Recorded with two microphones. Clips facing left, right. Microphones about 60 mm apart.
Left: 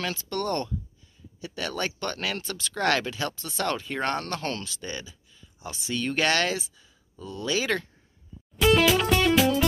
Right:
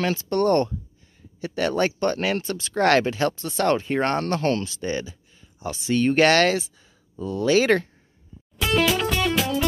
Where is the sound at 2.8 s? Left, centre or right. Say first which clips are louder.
Right 6 dB; right.